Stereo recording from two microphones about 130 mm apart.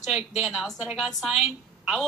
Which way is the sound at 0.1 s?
5° right (ahead or behind).